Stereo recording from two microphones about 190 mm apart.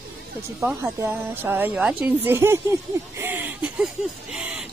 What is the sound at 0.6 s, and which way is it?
A woman's voice, 10° right (ahead or behind).